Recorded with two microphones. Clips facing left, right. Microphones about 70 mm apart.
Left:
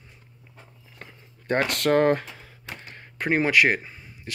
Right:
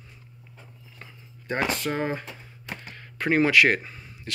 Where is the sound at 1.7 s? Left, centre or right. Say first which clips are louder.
Left 7 dB; left.